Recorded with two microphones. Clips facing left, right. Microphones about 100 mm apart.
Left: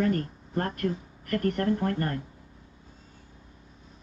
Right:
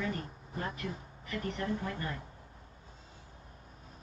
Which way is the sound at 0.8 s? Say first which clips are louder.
Left 10 dB; 55° left (ahead or behind).